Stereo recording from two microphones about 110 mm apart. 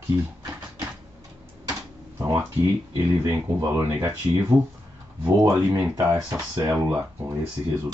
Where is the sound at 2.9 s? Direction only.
25° right (ahead or behind).